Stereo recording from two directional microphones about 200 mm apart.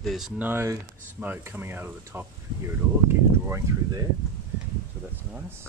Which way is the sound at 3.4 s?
15° right (ahead or behind).